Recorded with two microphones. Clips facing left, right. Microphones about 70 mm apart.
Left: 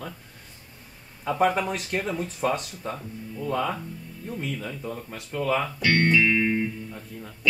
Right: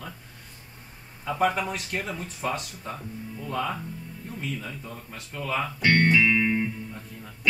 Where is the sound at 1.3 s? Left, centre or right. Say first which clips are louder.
Left 2 dB; centre.